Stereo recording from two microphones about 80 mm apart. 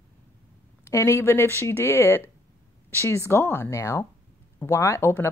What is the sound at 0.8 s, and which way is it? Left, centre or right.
Speech, left.